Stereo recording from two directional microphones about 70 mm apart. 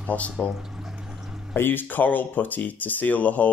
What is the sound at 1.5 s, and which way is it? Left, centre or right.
Speech, left.